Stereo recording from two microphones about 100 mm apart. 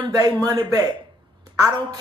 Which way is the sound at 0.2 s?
40° right (ahead or behind).